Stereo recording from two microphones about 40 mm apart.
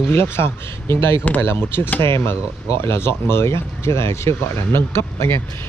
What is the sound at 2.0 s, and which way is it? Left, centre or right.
Speech, left.